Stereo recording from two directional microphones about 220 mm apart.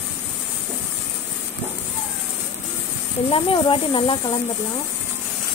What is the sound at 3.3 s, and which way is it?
Speech, 25° left (ahead or behind).